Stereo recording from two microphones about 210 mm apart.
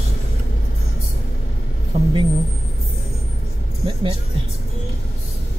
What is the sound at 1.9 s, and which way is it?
Speech, 30° right (ahead or behind).